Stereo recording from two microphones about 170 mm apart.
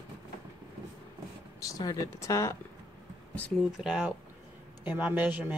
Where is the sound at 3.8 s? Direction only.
5° right (ahead or behind).